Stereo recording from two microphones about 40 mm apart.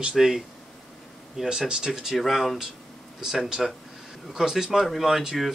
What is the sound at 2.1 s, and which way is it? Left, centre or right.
Speech, centre.